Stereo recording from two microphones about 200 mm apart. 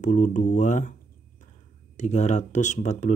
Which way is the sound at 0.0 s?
40° left (ahead or behind).